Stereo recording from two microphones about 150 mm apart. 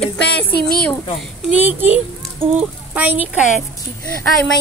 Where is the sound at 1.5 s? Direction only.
10° right (ahead or behind).